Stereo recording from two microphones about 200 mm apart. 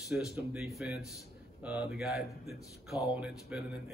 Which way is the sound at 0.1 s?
Centre (ahead or behind).